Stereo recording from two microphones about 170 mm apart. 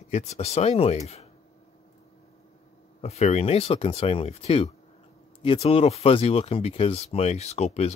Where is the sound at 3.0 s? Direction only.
40° left (ahead or behind).